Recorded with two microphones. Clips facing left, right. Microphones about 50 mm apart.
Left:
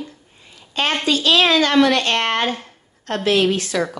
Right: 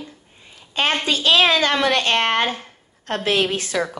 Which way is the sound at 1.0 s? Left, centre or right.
Right.